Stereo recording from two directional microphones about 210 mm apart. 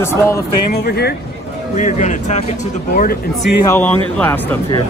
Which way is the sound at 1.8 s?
35° left (ahead or behind).